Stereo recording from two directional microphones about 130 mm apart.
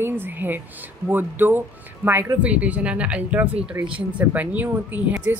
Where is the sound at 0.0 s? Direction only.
15° right (ahead or behind).